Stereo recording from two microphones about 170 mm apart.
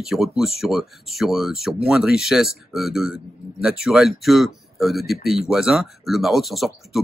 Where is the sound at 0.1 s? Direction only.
Centre (ahead or behind).